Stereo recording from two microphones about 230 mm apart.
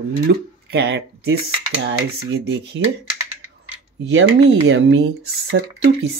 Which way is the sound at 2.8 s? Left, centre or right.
Right.